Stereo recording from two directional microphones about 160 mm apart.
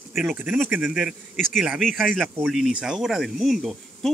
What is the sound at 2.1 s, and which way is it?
Speech, 10° right (ahead or behind).